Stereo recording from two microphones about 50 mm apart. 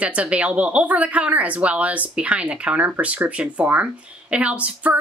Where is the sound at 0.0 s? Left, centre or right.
Right.